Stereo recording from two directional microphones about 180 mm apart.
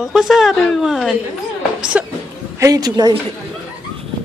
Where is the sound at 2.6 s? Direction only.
20° right (ahead or behind).